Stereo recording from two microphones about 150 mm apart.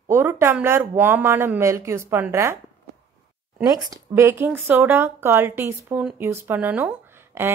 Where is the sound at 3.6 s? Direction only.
20° right (ahead or behind).